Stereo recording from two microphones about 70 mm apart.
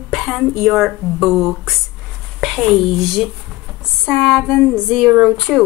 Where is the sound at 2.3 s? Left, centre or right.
Centre.